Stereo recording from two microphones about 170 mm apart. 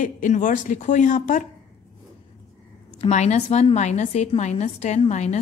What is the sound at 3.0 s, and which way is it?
A woman's voice, 40° left (ahead or behind).